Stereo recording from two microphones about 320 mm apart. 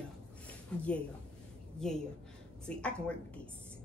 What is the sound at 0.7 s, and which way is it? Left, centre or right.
A woman's voice, centre.